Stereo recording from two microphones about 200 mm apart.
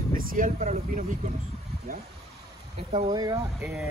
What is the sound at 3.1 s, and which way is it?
Speech, 20° right (ahead or behind).